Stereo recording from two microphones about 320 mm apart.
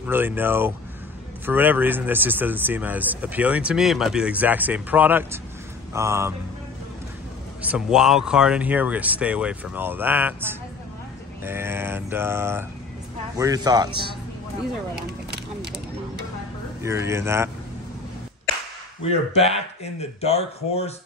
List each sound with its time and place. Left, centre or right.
0.0 s mantra: centre
1.4 s speech: centre
5.9 s mantra: centre
7.7 s speech: centre
11.4 s mantra: centre
16.8 s mantra: centre
19.0 s speech: centre